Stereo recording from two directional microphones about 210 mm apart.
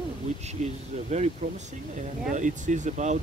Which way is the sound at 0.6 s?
30° right (ahead or behind).